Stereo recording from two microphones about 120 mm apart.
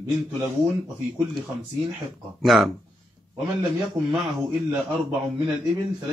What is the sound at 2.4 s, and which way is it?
Speech, centre (ahead or behind).